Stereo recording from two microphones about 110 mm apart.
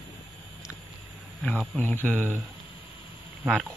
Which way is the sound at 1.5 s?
10° right (ahead or behind).